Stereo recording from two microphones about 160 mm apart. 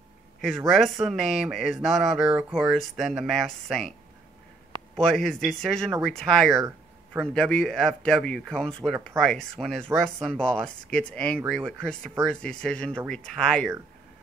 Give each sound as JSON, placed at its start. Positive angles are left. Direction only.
{"t": 0.4, "sound": "speech", "side_deg": 0}
{"t": 4.9, "sound": "speech", "side_deg": 5}